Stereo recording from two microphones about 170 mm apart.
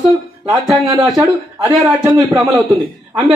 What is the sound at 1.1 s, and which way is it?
Speech, 20° right (ahead or behind).